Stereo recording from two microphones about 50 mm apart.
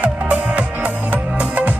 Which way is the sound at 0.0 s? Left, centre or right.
Right.